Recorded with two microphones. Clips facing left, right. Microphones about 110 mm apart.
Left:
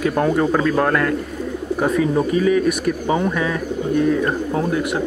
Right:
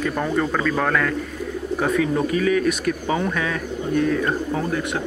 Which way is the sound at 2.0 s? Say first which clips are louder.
Left 3 dB; 20° left (ahead or behind).